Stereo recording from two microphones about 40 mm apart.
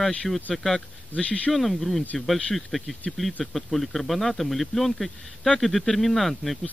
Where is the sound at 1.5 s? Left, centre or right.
Centre.